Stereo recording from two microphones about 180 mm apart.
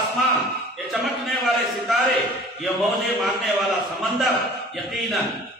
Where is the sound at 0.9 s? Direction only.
Centre (ahead or behind).